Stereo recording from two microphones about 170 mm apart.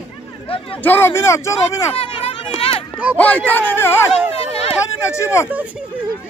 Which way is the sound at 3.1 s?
10° left (ahead or behind).